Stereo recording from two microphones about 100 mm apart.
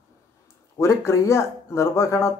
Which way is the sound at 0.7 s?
25° left (ahead or behind).